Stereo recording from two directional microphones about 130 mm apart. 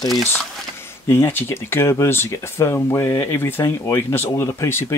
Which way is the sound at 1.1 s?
15° left (ahead or behind).